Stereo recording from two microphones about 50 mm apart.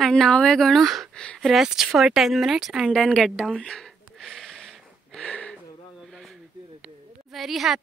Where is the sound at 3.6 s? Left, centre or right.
Centre.